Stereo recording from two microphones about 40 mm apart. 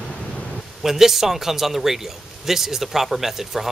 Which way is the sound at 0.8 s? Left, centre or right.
Centre.